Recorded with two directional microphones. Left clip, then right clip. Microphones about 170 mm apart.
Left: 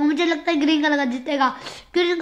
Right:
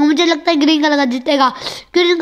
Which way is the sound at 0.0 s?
35° right (ahead or behind).